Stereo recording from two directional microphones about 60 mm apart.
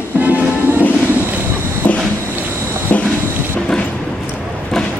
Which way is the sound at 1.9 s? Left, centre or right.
Left.